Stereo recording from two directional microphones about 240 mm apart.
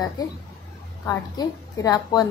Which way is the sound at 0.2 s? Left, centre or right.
Centre.